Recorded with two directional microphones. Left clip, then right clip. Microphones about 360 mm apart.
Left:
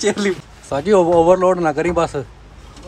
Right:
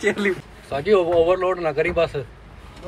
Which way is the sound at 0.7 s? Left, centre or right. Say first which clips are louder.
Left 4 dB; left.